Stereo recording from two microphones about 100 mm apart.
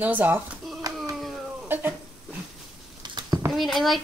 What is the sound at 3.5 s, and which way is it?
Speech, centre (ahead or behind).